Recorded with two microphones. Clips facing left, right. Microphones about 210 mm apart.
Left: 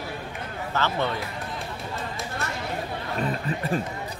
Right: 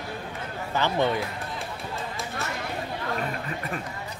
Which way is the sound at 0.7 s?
15° right (ahead or behind).